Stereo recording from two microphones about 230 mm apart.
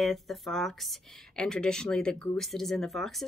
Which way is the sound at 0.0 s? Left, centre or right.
Centre.